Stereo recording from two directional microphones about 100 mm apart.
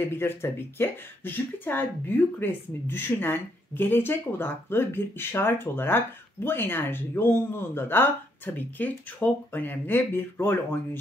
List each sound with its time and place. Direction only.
0.0 s speech: 20° left (ahead or behind)